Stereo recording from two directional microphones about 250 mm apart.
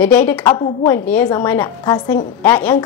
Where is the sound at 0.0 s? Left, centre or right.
Centre.